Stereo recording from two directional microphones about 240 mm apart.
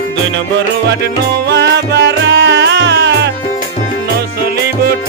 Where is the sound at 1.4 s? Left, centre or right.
Right.